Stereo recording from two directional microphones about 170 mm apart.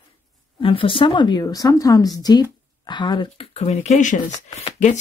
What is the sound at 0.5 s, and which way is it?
Speech, 30° left (ahead or behind).